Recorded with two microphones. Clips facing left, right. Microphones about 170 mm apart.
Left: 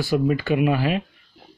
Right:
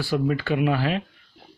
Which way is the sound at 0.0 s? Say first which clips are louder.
Left 3 dB; 15° left (ahead or behind).